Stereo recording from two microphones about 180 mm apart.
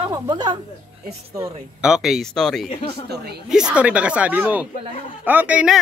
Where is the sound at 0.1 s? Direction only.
25° right (ahead or behind).